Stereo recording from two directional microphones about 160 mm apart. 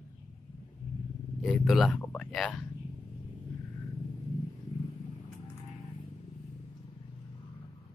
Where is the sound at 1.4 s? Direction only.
Centre (ahead or behind).